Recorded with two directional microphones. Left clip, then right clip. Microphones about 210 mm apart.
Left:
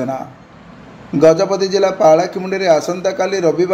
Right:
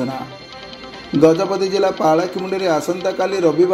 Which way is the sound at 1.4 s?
20° right (ahead or behind).